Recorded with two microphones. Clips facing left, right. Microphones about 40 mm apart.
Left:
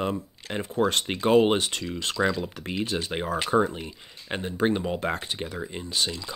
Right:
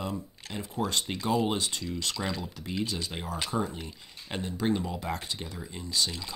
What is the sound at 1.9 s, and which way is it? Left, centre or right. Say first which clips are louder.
Speech: left 11 dB; left.